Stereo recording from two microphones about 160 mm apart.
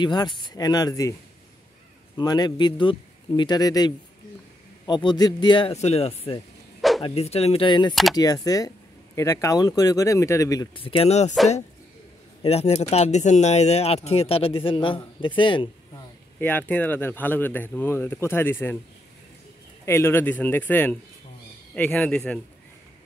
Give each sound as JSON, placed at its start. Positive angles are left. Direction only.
{"t": 0.0, "sound": "speech", "side_deg": 30}
{"t": 2.1, "sound": "speech", "side_deg": 25}
{"t": 7.9, "sound": "speech", "side_deg": 0}
{"t": 8.2, "sound": "speech", "side_deg": 20}
{"t": 12.4, "sound": "speech", "side_deg": 40}
{"t": 16.3, "sound": "speech", "side_deg": 10}
{"t": 19.8, "sound": "speech", "side_deg": 15}